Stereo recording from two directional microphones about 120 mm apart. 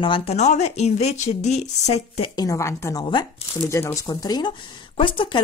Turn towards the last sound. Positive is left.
turn(degrees=45)  # may be behind; listen again after turning